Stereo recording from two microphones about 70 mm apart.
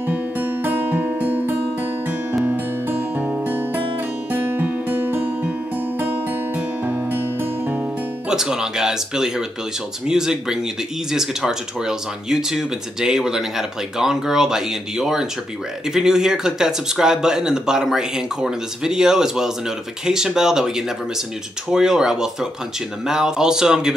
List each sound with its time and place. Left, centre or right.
0.1 s music: right
8.3 s speech: centre